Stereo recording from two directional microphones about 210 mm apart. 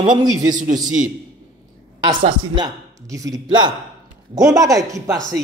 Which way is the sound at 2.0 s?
20° right (ahead or behind).